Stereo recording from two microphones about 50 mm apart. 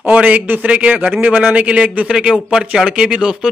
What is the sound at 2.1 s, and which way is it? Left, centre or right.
A man's voice, centre.